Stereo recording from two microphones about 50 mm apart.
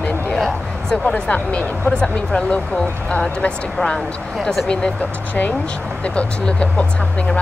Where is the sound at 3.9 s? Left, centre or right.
Centre.